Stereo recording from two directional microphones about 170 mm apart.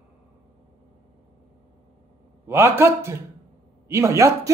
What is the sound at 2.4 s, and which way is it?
A man's voice, 15° right (ahead or behind).